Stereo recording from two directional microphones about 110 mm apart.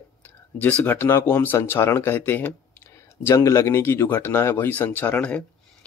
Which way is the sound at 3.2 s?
30° left (ahead or behind).